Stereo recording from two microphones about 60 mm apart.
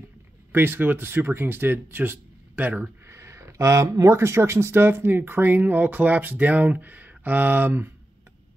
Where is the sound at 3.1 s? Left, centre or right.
Right.